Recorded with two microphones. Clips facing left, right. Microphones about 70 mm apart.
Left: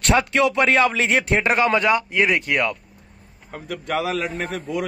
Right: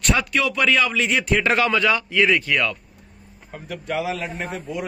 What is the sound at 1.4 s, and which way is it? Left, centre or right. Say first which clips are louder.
Speech: left 1 dB; left.